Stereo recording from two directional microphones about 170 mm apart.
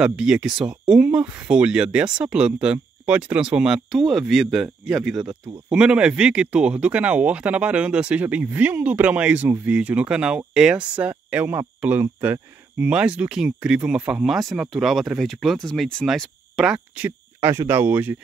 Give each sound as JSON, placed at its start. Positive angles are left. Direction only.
{"t": 0.0, "sound": "speech", "side_deg": -5}